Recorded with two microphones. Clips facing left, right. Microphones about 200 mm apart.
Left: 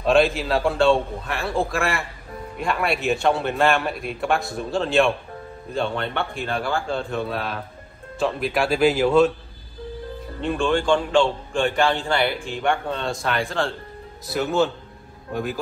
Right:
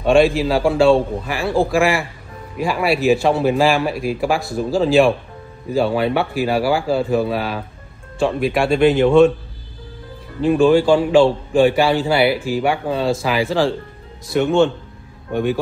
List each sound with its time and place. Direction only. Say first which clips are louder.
0.0 s a man's voice: right 5 dB; centre (ahead or behind)
10.4 s a man's voice: right 9 dB; 5° right (ahead or behind)